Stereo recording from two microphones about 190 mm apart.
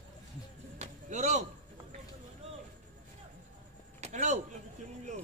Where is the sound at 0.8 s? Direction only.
35° right (ahead or behind).